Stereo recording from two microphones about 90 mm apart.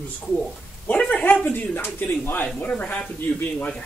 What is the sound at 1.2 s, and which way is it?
Speech, 20° left (ahead or behind).